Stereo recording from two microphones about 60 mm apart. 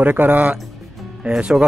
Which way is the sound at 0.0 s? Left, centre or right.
Right.